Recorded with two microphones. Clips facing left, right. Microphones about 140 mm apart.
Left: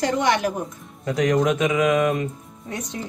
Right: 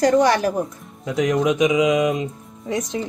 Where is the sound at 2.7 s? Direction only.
90° right.